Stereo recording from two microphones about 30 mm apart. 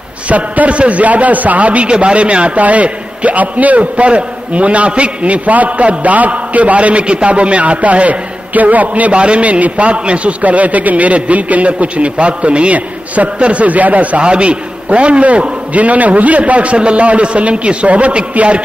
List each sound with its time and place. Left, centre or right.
0.3 s a man's voice: right
1.9 s a man's voice: right
9.1 s a man's voice: right
10.4 s a man's voice: right
12.7 s a man's voice: right
13.4 s a man's voice: right
14.2 s a man's voice: right
15.7 s a man's voice: right